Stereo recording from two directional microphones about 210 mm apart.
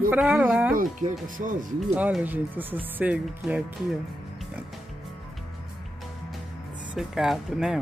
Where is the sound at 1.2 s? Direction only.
40° right (ahead or behind).